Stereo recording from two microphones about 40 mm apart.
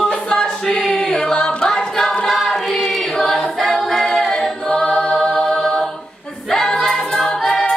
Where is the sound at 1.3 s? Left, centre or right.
Left.